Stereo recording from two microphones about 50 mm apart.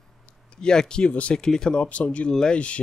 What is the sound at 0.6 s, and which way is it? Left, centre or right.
Speech, centre.